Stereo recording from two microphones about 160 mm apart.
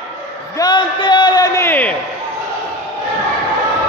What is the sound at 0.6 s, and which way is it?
A man's voice, 30° left (ahead or behind).